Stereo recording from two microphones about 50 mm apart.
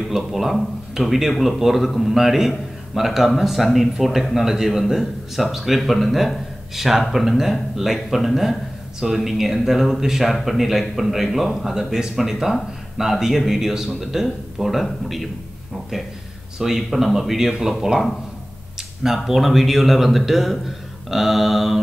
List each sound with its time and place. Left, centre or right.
0.1 s a man's voice: centre
16.5 s a man's voice: centre
19.0 s a man's voice: centre